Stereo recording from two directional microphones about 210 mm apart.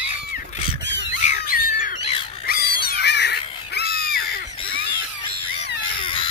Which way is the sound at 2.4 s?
45° left (ahead or behind).